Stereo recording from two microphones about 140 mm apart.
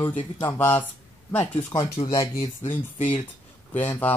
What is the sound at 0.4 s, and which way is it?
Speech, 20° left (ahead or behind).